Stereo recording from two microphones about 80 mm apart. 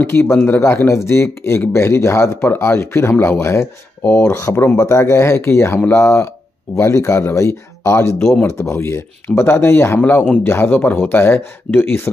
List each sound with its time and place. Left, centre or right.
0.0 s speech: left